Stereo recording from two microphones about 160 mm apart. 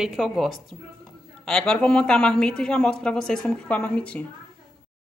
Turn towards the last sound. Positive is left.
turn(degrees=10)  # may be behind; listen again after turning